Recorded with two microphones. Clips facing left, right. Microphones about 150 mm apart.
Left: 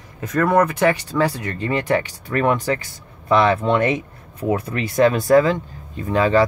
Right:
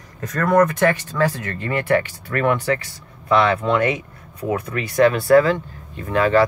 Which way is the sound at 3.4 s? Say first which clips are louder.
Left 1 dB; 30° left (ahead or behind).